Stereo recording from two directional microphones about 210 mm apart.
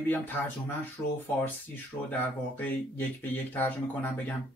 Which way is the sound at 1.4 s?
10° left (ahead or behind).